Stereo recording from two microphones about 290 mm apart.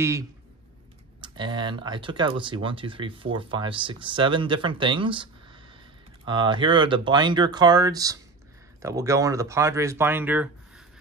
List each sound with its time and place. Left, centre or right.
0.0 s speech: centre